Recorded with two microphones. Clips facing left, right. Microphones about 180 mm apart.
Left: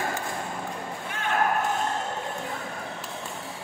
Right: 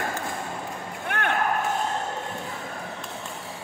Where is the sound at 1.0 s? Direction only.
65° right (ahead or behind).